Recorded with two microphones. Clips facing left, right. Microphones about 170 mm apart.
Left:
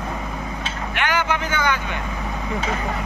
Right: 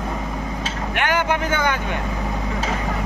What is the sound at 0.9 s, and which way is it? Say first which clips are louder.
Vehicle: right 2 dB; 50° right (ahead or behind).